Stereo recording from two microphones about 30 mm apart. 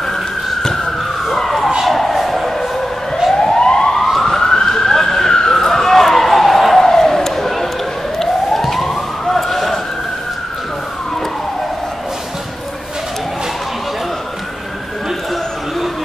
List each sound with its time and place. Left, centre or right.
0.1 s police car: centre
1.3 s emergency vehicle: centre
1.9 s a sound: centre
3.3 s emergency vehicle: left
3.9 s emergency vehicle: centre
4.4 s police car: centre
5.3 s a sound: centre
8.2 s emergency vehicle: centre
8.8 s police car: centre